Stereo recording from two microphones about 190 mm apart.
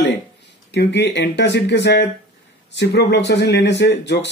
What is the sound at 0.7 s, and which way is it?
Speech, 65° left (ahead or behind).